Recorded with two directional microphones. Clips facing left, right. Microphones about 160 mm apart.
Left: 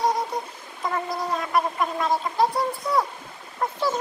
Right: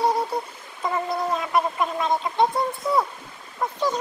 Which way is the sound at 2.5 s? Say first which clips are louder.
Right 1 dB; 20° right (ahead or behind).